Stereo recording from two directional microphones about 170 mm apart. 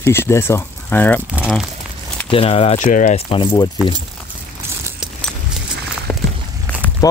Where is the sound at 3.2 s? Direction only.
30° left (ahead or behind).